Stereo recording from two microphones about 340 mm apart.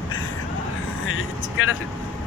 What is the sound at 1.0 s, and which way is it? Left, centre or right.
Vehicle, left.